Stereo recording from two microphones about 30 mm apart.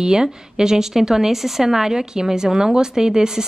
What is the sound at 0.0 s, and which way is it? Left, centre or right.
A woman's voice, right.